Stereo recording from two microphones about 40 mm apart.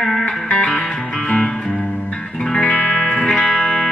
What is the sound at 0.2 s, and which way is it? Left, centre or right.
Music, left.